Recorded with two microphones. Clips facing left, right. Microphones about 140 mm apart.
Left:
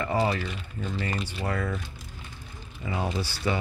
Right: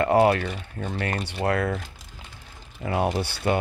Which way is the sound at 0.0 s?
65° right (ahead or behind).